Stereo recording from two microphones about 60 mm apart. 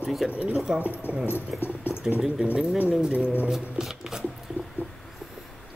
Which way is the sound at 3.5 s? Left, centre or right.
Centre.